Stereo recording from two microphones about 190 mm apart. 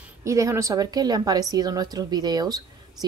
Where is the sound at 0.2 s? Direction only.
15° right (ahead or behind).